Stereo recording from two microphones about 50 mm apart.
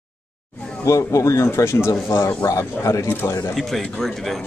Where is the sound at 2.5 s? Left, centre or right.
Left.